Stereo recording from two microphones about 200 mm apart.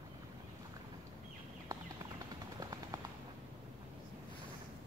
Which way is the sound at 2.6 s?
20° right (ahead or behind).